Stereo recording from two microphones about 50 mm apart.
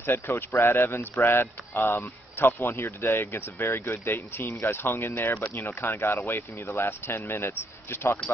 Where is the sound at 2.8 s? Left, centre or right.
Left.